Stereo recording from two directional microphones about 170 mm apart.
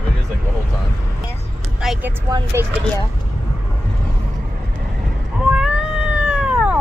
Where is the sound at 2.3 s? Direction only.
15° right (ahead or behind).